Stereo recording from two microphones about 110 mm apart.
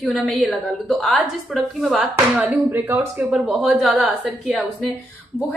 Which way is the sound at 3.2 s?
5° right (ahead or behind).